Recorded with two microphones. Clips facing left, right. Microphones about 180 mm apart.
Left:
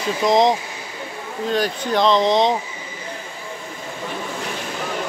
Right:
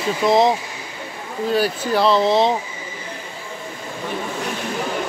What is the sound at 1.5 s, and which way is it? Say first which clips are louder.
Speech: right 1 dB; 5° right (ahead or behind).